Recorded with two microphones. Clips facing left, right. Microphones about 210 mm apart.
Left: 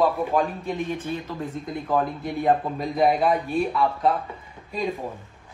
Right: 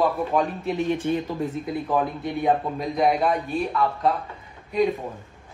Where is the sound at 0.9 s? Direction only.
15° right (ahead or behind).